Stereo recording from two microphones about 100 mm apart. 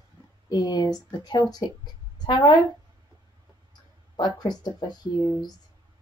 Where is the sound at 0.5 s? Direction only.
40° left (ahead or behind).